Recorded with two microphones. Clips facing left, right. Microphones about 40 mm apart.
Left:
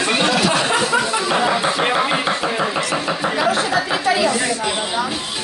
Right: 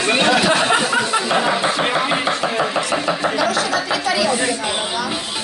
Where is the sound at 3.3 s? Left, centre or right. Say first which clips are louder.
Left 1 dB; left.